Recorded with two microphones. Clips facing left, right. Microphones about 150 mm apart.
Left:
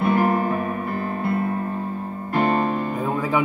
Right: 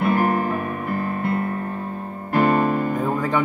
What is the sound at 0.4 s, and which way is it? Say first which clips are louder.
Music: left 1 dB; 35° left (ahead or behind).